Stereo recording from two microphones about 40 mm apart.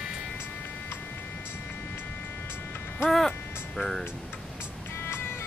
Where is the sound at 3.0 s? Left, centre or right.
Centre.